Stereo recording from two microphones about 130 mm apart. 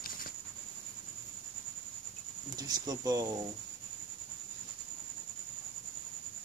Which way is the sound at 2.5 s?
30° right (ahead or behind).